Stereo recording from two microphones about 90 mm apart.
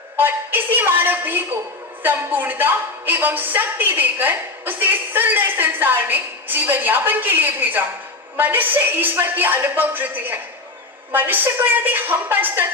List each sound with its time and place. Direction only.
0.2 s a woman's voice: 20° right (ahead or behind)